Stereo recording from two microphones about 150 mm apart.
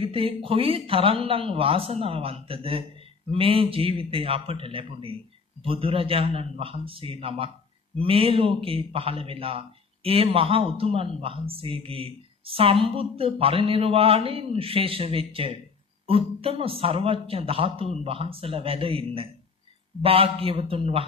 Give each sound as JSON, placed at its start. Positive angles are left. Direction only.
{"t": 0.0, "sound": "speech", "side_deg": -35}